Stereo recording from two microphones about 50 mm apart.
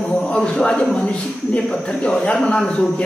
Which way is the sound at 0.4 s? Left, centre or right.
Centre.